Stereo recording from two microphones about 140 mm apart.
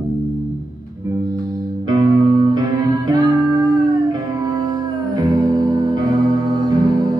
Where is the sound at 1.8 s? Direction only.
30° right (ahead or behind).